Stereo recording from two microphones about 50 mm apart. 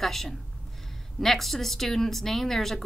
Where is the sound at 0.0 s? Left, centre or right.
Centre.